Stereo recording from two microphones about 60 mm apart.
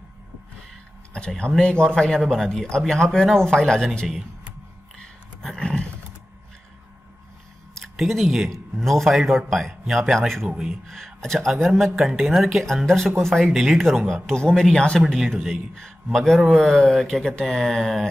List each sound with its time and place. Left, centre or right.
1.1 s a man's voice: centre
4.9 s a sound: centre
7.9 s speech: centre
10.5 s speech: centre
10.9 s a man's voice: centre
13.5 s speech: centre
13.7 s a man's voice: centre